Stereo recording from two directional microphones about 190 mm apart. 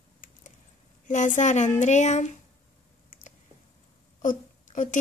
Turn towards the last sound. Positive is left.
turn(degrees=40)  # may be behind; listen again after turning